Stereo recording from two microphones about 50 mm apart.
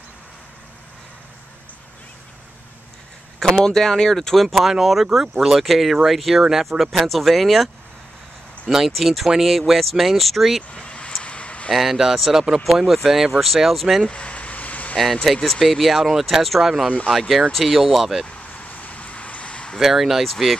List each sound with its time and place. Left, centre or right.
3.5 s speech: centre
10.7 s vehicle: left
11.2 s a sound: left
11.7 s speech: centre
14.0 s vehicle: left
15.3 s speech: centre
15.6 s speech: centre
18.2 s a sound: left
19.8 s speech: centre